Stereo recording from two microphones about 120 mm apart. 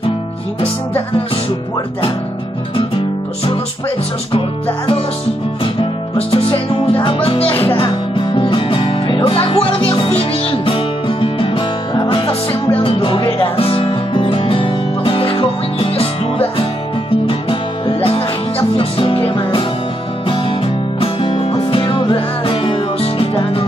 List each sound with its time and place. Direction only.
5.6 s music: 50° left (ahead or behind)